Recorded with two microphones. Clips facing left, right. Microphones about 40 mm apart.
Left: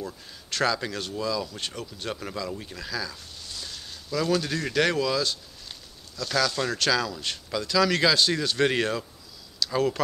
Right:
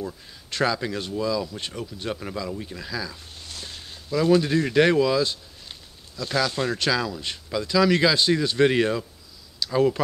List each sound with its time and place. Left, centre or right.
0.0 s speech: centre
3.3 s speech: right; by 9.9 s centre